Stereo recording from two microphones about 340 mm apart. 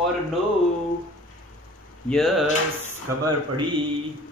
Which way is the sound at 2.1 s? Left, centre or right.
Centre.